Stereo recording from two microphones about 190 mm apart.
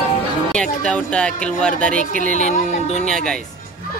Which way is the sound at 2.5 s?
35° left (ahead or behind).